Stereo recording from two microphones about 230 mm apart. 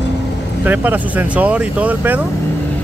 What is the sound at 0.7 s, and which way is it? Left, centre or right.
Speech, centre.